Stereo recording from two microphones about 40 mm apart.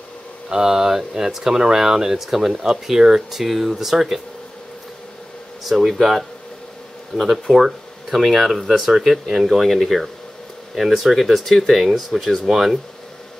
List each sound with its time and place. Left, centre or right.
0.5 s speech: centre
5.6 s speech: centre